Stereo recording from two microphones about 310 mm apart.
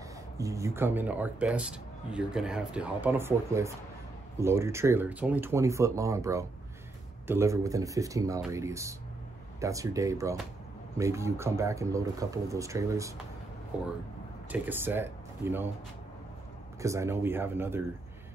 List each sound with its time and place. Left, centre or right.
0.4 s speech: centre
16.8 s speech: centre